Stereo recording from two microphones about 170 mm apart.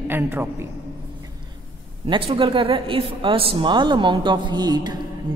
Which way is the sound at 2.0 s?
30° right (ahead or behind).